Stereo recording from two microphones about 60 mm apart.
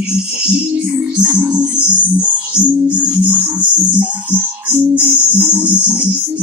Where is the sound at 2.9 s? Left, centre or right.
Right.